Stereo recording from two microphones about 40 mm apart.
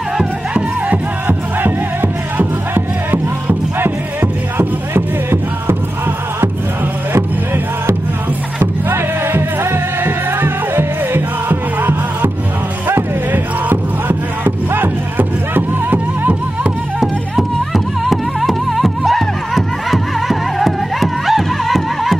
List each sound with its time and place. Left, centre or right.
1.2 s music: right
8.9 s music: right
13.3 s music: right
17.0 s music: centre